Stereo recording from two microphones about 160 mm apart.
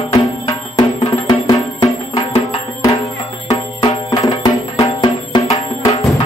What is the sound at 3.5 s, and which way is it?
Music, 20° left (ahead or behind).